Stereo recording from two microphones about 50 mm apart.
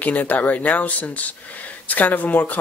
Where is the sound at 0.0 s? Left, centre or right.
Left.